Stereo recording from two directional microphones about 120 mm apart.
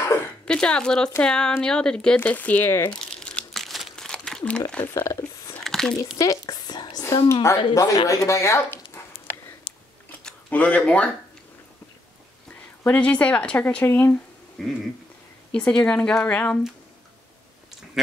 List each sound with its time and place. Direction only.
0.5 s speech: 5° left (ahead or behind)
3.2 s crumpling: 5° left (ahead or behind)
4.9 s speech: 25° left (ahead or behind)
5.6 s a sound: centre (ahead or behind)
6.1 s speech: 30° left (ahead or behind)
8.1 s dog: 25° left (ahead or behind)
9.7 s a sound: 40° left (ahead or behind)
10.0 s a sound: 10° left (ahead or behind)
12.8 s speech: 10° left (ahead or behind)
15.5 s speech: 10° left (ahead or behind)